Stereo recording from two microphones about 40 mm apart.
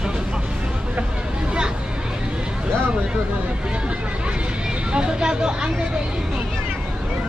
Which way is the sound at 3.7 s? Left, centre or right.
Right.